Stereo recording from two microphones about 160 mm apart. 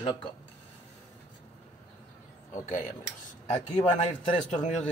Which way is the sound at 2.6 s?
50° left (ahead or behind).